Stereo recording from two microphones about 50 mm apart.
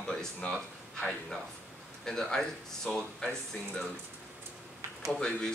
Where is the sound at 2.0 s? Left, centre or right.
Centre.